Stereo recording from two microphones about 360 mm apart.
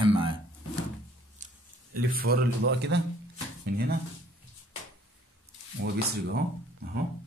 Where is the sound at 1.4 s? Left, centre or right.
Centre.